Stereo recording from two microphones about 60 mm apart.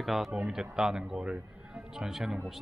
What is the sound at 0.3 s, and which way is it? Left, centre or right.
Speech, centre.